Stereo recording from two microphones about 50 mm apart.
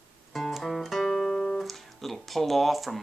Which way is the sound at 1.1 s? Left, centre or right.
Centre.